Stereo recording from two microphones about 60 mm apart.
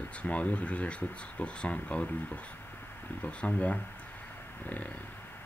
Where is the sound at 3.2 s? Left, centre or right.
Left.